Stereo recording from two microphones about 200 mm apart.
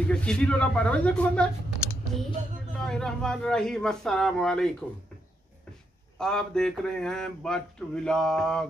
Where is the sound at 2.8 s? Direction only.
5° left (ahead or behind).